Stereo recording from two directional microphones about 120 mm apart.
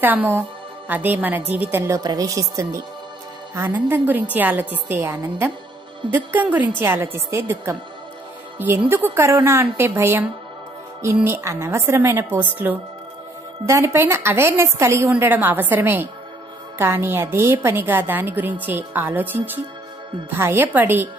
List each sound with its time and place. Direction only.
0.0 s a woman's voice: 15° right (ahead or behind)
2.0 s a woman's voice: 30° right (ahead or behind)
3.5 s a woman's voice: 15° right (ahead or behind)
11.2 s a woman's voice: 20° right (ahead or behind)